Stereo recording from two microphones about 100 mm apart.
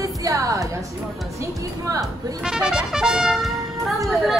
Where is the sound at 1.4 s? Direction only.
35° right (ahead or behind).